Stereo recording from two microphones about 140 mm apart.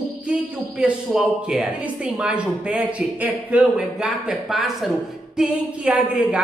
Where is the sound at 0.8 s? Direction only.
5° right (ahead or behind).